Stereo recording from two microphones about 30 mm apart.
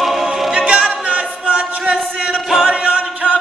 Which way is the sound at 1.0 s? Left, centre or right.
Right.